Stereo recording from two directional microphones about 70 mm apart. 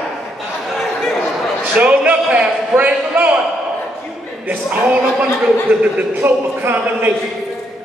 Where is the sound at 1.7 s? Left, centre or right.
Centre.